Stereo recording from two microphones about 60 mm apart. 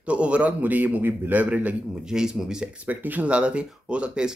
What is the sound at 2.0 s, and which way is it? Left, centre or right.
Speech, centre.